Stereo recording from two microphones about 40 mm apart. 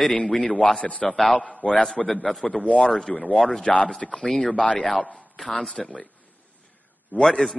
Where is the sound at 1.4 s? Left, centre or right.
Left.